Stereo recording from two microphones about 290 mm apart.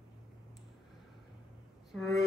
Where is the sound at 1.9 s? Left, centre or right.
Centre.